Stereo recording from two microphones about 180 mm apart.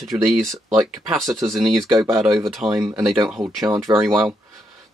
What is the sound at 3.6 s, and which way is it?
Speech, 20° right (ahead or behind).